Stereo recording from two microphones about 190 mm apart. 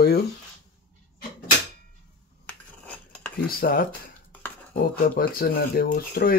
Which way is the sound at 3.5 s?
50° left (ahead or behind).